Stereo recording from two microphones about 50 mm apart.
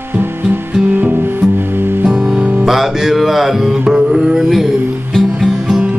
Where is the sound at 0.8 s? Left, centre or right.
Right.